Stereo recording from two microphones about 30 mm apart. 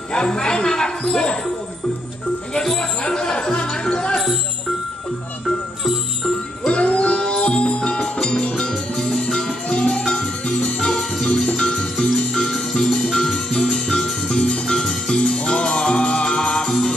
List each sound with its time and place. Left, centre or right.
0.1 s speech: left
3.1 s speech: left
6.7 s music: left
7.2 s music: left
8.9 s music: centre
9.7 s music: left
11.2 s cowbell: left
11.5 s music: left
14.8 s music: centre
15.3 s music: left